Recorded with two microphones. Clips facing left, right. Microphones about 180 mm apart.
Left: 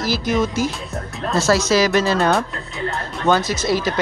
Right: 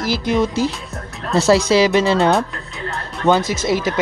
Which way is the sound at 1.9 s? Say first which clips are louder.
Right 2 dB; 20° right (ahead or behind).